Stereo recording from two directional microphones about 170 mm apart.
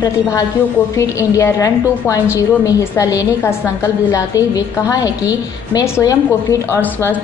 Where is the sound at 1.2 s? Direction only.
20° left (ahead or behind).